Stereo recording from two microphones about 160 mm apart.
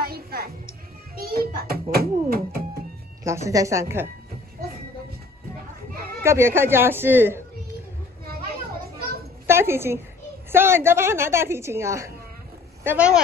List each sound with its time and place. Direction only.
0.0 s music: 70° right (ahead or behind)
1.1 s a child's voice: 70° right (ahead or behind)
3.3 s speech: 20° right (ahead or behind)
6.2 s a woman's voice: 15° right (ahead or behind)
9.5 s a woman's voice: 15° right (ahead or behind)